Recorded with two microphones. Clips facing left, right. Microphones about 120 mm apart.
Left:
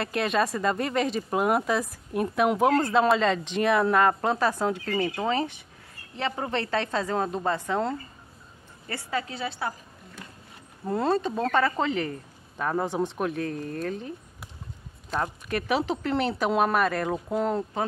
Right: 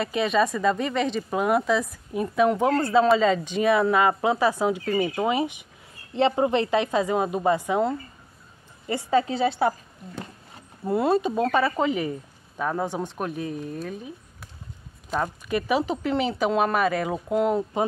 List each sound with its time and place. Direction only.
0.0 s speech: centre (ahead or behind)
8.8 s a woman's voice: 20° right (ahead or behind)
10.9 s speech: 10° right (ahead or behind)
15.2 s speech: centre (ahead or behind)